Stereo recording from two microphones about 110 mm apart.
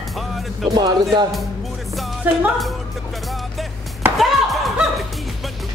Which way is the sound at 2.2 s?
15° right (ahead or behind).